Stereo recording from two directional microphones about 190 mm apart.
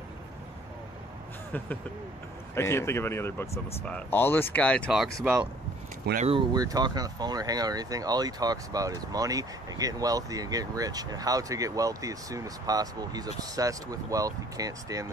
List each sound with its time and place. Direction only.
2.5 s speech: 15° left (ahead or behind)
6.1 s speech: 35° right (ahead or behind)
6.5 s speech: 20° right (ahead or behind)